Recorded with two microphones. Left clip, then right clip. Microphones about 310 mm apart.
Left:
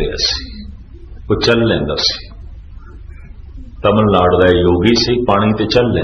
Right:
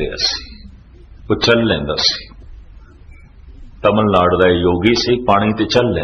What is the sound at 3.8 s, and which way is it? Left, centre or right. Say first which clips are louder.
A man's voice: left 1 dB; right.